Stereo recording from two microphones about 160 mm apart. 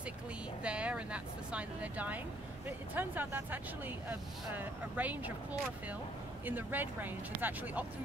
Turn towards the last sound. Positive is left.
turn(degrees=-10)  # may be behind; listen again after turning